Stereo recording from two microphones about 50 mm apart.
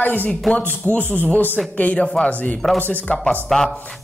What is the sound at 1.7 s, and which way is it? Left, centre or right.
Speech, left.